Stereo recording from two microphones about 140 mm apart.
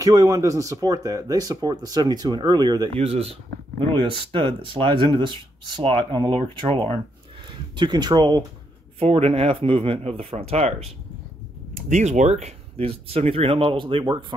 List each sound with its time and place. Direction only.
0.0 s speech: 20° right (ahead or behind)
3.0 s speech: 45° right (ahead or behind)
9.0 s speech: 45° right (ahead or behind)
11.7 s speech: 60° right (ahead or behind); by 14.1 s 40° right (ahead or behind)